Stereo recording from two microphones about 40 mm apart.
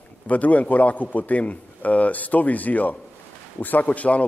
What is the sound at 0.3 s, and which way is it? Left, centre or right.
A man's voice, left.